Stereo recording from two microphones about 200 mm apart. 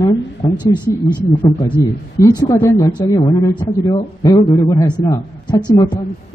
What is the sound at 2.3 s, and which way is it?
A woman's voice, 15° left (ahead or behind).